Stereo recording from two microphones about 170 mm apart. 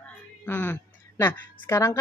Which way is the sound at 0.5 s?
10° left (ahead or behind).